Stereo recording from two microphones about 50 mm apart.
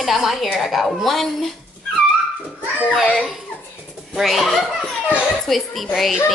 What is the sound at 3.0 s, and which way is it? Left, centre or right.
Speech, centre.